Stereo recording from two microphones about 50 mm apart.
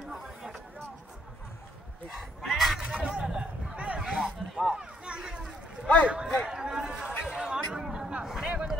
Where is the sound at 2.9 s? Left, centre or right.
Centre.